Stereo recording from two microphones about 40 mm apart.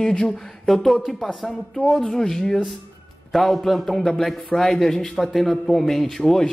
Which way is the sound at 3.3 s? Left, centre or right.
Centre.